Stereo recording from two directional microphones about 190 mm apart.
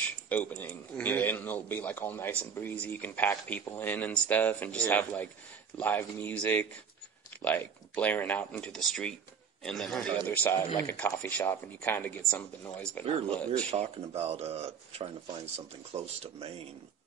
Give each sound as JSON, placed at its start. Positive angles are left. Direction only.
{"t": 0.3, "sound": "a man's voice", "side_deg": 10}
{"t": 13.7, "sound": "speech", "side_deg": -35}